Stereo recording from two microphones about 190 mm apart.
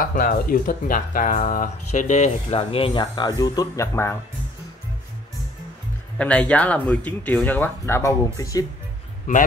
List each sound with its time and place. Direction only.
0.0 s speech: 45° left (ahead or behind); by 4.2 s 15° left (ahead or behind)
6.1 s speech: 5° left (ahead or behind)
9.3 s a man's voice: 40° left (ahead or behind)